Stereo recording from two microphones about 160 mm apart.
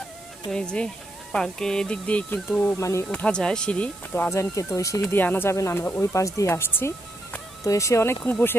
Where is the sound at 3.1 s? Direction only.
5° left (ahead or behind).